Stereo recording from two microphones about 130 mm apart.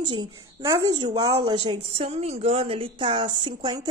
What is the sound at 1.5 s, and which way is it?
A woman's voice, 45° right (ahead or behind).